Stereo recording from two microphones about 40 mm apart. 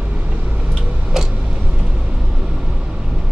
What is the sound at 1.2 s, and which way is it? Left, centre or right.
Vehicle, centre.